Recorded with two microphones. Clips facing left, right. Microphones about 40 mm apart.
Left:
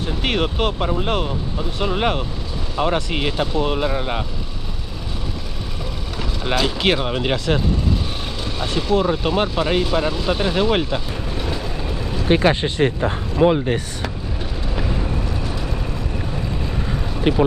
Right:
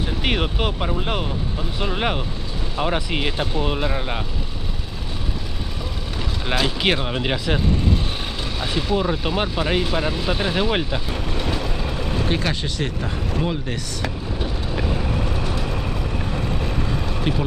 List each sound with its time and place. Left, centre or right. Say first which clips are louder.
0.0 s speech: left 2 dB; centre
6.5 s speech: left 2 dB; centre
11.1 s speech: right 1 dB; right
11.6 s vehicle: even; centre
12.3 s speech: left 7 dB; left
15.2 s vehicle: right 1 dB; centre
17.3 s speech: left 6 dB; left